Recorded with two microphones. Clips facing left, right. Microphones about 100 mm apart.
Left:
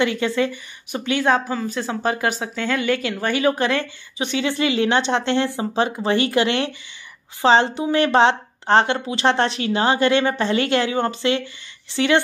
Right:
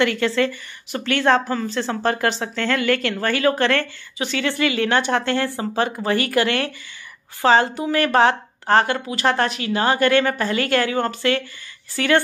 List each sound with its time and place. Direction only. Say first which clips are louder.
0.0 s a woman's voice: right 1 dB; 15° left (ahead or behind)